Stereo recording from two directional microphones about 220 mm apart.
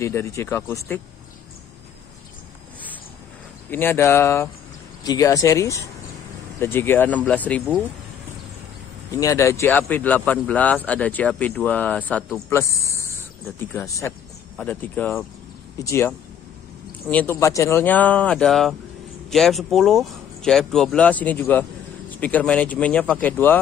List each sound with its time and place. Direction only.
0.0 s speech: 10° left (ahead or behind)
3.7 s speech: 10° left (ahead or behind)
9.2 s speech: 15° left (ahead or behind)